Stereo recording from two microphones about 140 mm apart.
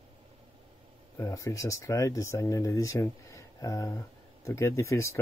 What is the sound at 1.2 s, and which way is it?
Speech, 20° left (ahead or behind).